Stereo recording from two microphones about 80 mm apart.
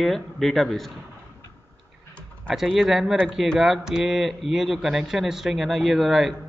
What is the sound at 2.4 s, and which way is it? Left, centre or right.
Speech, centre.